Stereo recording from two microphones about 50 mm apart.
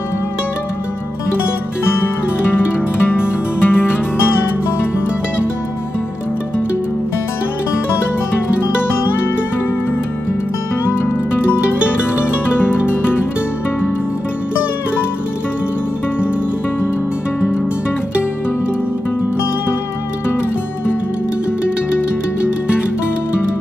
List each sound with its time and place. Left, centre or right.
3.1 s music: left
12.6 s music: left